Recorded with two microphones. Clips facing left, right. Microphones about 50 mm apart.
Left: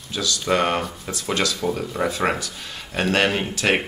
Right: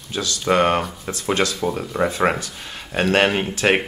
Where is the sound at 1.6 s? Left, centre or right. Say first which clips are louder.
Right 2 dB; centre.